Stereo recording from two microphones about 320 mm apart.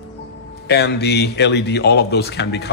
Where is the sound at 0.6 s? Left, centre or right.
Left.